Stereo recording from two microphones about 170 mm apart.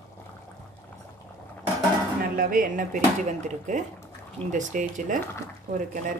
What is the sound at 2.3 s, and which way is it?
Speech, 55° right (ahead or behind).